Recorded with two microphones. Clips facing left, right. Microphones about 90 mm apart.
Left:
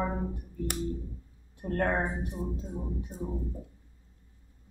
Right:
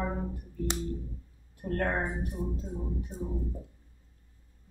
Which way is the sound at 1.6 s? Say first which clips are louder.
Left 2 dB; 20° left (ahead or behind).